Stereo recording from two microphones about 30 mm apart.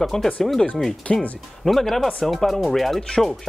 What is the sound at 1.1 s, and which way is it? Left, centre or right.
Speech, left.